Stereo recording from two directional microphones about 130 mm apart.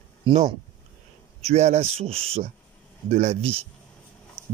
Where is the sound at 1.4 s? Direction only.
55° right (ahead or behind).